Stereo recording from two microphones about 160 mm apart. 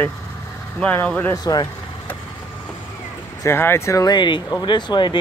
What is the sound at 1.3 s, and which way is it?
Speech, 25° left (ahead or behind).